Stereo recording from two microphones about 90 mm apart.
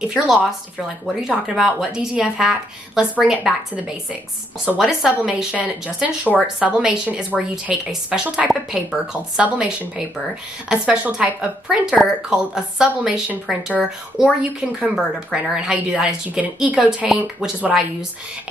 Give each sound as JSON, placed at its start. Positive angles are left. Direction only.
{"t": 0.7, "sound": "a woman's voice", "side_deg": -5}
{"t": 3.7, "sound": "a woman's voice", "side_deg": -15}
{"t": 4.7, "sound": "a woman's voice", "side_deg": -5}